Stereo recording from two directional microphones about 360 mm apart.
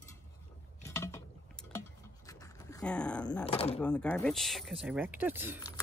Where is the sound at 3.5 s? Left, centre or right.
Centre.